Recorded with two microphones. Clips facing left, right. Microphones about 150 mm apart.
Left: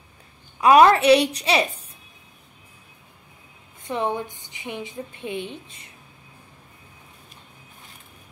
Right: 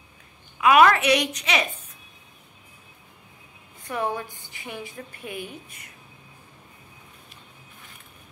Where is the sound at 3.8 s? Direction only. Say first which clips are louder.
Left 3 dB; 20° left (ahead or behind).